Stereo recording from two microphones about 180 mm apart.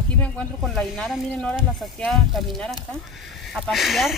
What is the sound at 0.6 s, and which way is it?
Speech, centre (ahead or behind).